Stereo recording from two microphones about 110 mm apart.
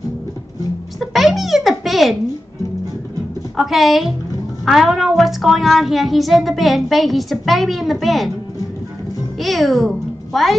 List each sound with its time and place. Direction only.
0.9 s a sound: centre (ahead or behind)
3.5 s speech: centre (ahead or behind)
9.4 s a child's voice: centre (ahead or behind)